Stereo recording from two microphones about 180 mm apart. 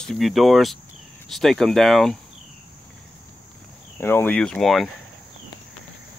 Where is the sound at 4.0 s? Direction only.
10° left (ahead or behind).